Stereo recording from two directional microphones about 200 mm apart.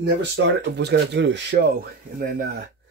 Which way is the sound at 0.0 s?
60° right (ahead or behind).